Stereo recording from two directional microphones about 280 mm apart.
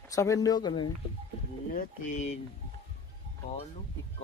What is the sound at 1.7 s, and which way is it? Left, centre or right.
Speech, left.